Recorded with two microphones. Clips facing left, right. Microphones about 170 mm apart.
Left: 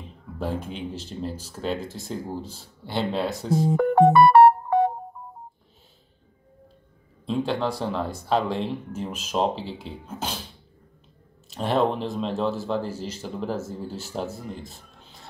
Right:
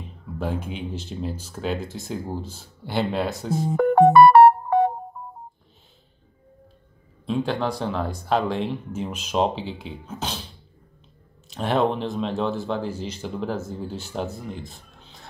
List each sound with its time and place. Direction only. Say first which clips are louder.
0.4 s speech: right 1 dB; centre (ahead or behind)
3.9 s music: right 3 dB; 55° right (ahead or behind)
7.2 s speech: right 1 dB; centre (ahead or behind)
11.5 s speech: right 1 dB; centre (ahead or behind)